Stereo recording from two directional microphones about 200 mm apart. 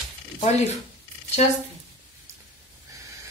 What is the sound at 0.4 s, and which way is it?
Speech, 35° left (ahead or behind).